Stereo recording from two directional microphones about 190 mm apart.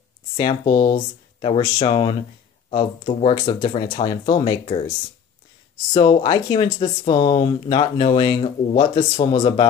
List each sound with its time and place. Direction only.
0.4 s speech: 25° left (ahead or behind)
5.9 s speech: 25° left (ahead or behind)